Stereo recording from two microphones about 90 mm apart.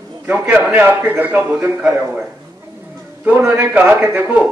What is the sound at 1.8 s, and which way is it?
Speech, 10° right (ahead or behind).